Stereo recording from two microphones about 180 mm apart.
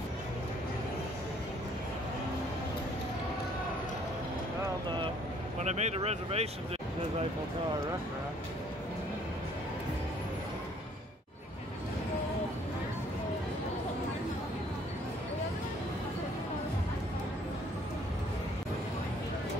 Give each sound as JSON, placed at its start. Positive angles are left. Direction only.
{"t": 5.6, "sound": "speech", "side_deg": -40}